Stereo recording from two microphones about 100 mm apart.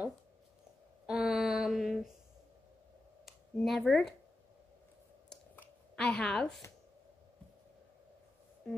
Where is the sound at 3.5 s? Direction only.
5° left (ahead or behind).